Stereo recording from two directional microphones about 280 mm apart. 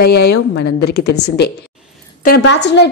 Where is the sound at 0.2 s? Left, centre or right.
Left.